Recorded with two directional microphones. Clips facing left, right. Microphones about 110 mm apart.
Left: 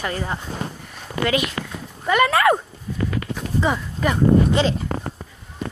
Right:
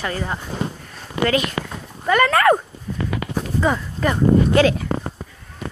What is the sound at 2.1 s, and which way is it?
Speech, 15° left (ahead or behind).